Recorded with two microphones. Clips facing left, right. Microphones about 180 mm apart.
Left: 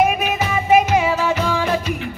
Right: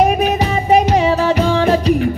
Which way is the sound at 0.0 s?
35° right (ahead or behind).